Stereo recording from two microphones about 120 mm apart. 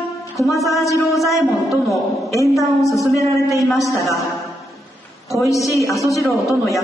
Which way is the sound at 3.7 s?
Centre (ahead or behind).